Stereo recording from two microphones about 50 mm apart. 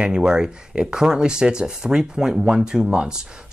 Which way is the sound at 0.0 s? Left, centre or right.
Centre.